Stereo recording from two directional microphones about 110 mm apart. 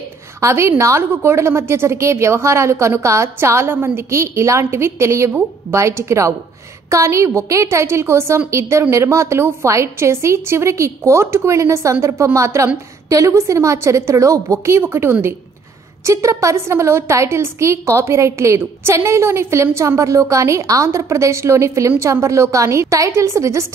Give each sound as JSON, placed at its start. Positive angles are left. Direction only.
{"t": 0.4, "sound": "a woman's voice", "side_deg": -25}